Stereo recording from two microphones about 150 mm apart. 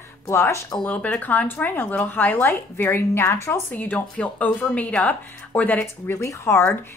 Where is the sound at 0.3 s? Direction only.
20° left (ahead or behind).